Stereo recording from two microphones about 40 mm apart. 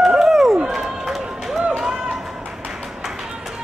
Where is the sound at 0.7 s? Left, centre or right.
Centre.